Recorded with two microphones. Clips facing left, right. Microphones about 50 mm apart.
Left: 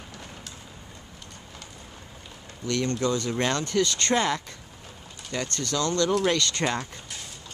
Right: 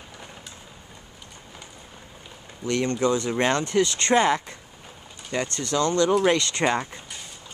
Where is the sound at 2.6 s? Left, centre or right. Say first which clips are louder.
Right 3 dB; centre.